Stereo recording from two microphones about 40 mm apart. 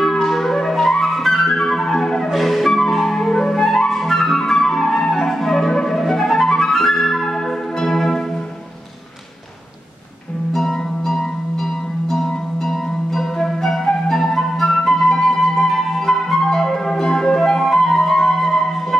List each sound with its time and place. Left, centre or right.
0.0 s flute: centre
1.5 s music: centre
2.3 s flute: centre
7.8 s music: centre
10.5 s music: centre